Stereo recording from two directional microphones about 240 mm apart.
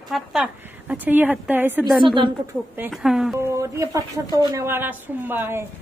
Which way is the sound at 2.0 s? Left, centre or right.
Centre.